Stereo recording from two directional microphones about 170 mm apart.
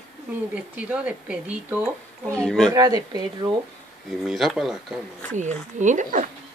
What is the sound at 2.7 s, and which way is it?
Speech, 25° right (ahead or behind).